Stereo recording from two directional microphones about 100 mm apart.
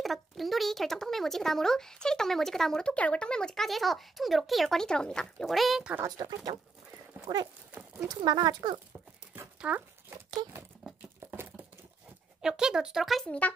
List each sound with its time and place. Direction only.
0.0 s speech: centre (ahead or behind)
6.1 s speech: 45° right (ahead or behind)
8.2 s speech: 45° right (ahead or behind)
9.6 s speech: 10° right (ahead or behind)
10.8 s crumpling: 5° right (ahead or behind)
11.2 s a sound: 20° right (ahead or behind)
12.4 s speech: 5° right (ahead or behind)